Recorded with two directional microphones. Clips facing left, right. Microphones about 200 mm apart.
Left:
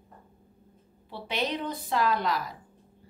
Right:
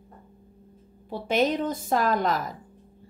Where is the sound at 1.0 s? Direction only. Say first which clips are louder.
Right 8 dB; 45° right (ahead or behind).